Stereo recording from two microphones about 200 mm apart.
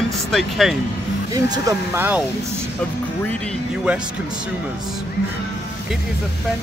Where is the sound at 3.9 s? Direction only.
5° right (ahead or behind).